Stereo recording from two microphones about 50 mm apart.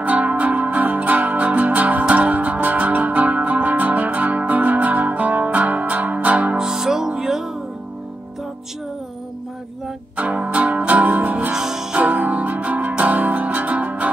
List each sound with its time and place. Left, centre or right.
0.0 s music: right
6.6 s music: centre
10.1 s music: right
11.5 s music: centre
12.0 s music: right